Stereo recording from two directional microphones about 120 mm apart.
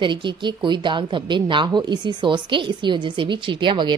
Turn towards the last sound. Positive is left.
turn(degrees=-40)  # may be behind; listen again after turning